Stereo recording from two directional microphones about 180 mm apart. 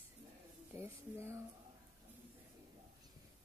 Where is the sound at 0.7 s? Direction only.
15° right (ahead or behind).